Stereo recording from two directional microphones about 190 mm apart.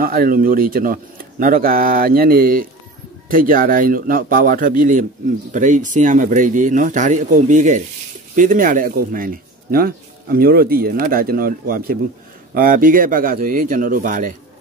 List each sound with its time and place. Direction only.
0.0 s speech: 50° right (ahead or behind)